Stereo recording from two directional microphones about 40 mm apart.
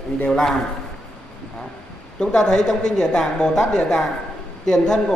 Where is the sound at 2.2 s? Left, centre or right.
Centre.